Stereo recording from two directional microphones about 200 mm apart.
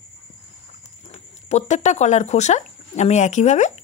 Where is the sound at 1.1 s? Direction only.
35° left (ahead or behind).